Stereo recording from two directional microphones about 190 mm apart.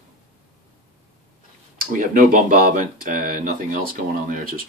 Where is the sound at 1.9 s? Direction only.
45° right (ahead or behind).